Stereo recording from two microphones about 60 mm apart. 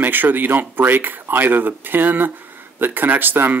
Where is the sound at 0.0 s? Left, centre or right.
Right.